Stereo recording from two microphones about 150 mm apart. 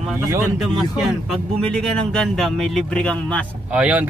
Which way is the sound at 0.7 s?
Centre (ahead or behind).